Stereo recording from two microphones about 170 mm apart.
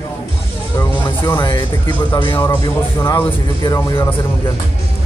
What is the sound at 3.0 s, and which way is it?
Speech, 20° left (ahead or behind).